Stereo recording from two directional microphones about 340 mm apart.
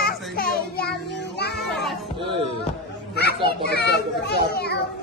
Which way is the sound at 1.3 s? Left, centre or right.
Left.